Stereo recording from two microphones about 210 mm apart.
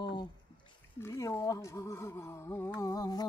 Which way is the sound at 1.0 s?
15° left (ahead or behind).